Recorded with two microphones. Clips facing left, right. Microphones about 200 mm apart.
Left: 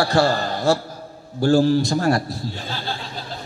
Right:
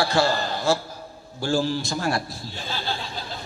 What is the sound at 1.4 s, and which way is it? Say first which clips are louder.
Speech: left 8 dB; 60° left (ahead or behind).